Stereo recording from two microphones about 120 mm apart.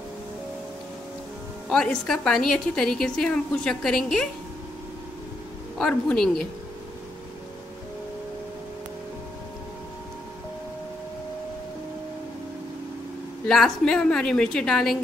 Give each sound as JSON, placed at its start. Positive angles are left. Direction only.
{"t": 1.7, "sound": "a woman's voice", "side_deg": 5}
{"t": 5.8, "sound": "a woman's voice", "side_deg": 5}
{"t": 13.5, "sound": "a woman's voice", "side_deg": 5}